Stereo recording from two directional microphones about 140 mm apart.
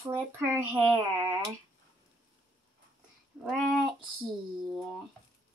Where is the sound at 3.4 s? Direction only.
Centre (ahead or behind).